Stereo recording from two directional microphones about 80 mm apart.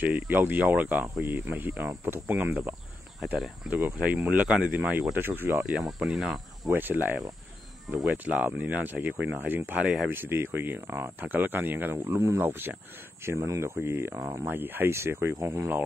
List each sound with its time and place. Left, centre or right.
0.0 s speech: right
3.7 s speech: centre
5.1 s speech: right
5.7 s speech: centre
6.7 s speech: right